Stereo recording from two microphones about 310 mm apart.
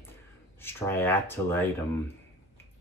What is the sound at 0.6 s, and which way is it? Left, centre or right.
Speech, centre.